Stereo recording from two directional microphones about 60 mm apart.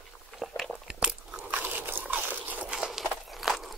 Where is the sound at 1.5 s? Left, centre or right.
Right.